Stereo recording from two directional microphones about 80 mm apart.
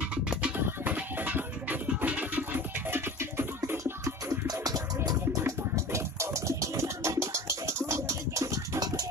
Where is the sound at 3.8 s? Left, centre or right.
Right.